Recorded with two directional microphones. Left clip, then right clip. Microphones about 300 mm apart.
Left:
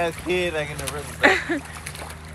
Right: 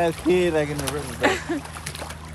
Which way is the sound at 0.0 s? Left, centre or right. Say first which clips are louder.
Right 3 dB; right.